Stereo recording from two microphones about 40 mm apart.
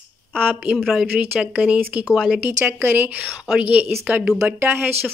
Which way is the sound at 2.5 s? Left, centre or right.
Right.